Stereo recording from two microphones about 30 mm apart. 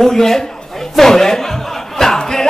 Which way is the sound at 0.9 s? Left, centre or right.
Centre.